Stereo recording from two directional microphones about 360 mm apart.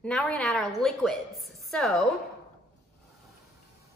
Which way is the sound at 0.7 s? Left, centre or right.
Centre.